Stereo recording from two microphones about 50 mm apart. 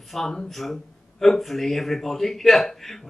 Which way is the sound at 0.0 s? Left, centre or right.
Centre.